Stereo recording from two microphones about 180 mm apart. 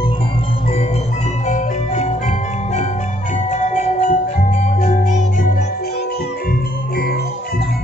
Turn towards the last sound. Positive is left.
turn(degrees=60)  # may be behind; listen again after turning